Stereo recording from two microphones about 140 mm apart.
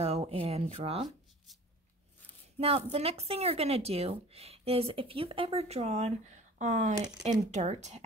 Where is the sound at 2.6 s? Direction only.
45° right (ahead or behind).